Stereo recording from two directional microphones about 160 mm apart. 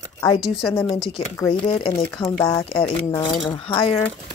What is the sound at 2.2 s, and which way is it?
Speech, 20° left (ahead or behind).